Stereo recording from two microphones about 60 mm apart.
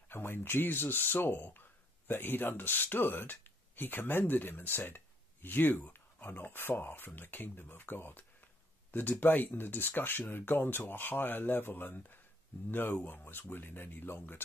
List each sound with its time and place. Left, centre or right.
0.1 s speech: left